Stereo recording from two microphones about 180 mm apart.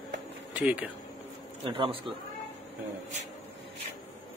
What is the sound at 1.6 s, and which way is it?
Speech, 30° right (ahead or behind).